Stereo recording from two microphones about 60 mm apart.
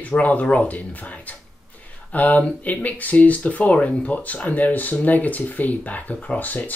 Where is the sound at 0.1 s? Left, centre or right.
Left.